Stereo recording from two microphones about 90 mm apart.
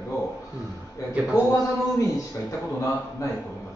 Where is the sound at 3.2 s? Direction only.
40° left (ahead or behind).